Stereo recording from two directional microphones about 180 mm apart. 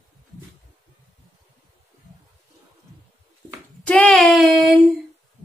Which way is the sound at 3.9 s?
5° left (ahead or behind).